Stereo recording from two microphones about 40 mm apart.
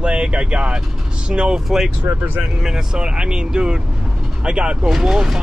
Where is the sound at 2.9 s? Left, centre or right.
Right.